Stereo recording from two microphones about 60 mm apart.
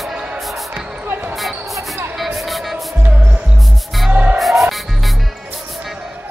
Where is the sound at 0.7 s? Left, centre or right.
Right.